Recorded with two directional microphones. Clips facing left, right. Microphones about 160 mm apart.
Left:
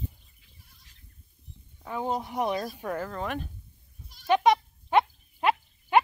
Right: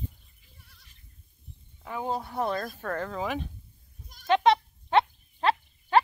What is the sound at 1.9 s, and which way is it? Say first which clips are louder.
Speech: left 1 dB; 20° left (ahead or behind).